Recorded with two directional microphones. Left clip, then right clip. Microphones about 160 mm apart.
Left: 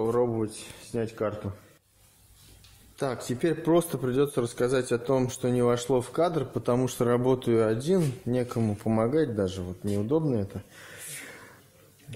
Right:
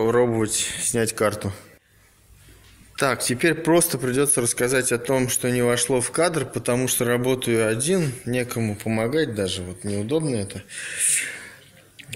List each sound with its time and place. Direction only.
0.0 s speech: 5° right (ahead or behind)
3.0 s a man's voice: 10° left (ahead or behind); by 10.5 s 35° left (ahead or behind)
10.5 s speech: 15° left (ahead or behind)